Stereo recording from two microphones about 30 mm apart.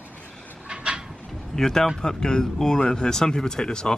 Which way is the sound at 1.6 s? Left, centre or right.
Centre.